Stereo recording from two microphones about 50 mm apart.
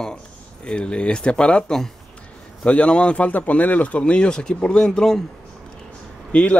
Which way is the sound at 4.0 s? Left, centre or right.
Centre.